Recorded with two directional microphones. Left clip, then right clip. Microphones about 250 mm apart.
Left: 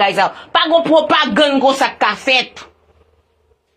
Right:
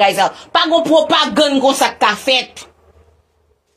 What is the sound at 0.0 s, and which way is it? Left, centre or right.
A man's voice, centre.